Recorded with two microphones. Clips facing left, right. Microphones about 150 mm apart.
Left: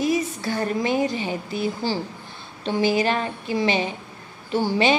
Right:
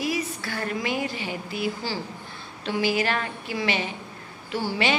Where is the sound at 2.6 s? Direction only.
20° left (ahead or behind).